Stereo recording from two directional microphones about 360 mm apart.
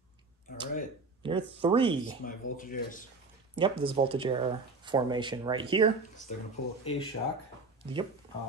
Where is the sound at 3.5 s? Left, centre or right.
Centre.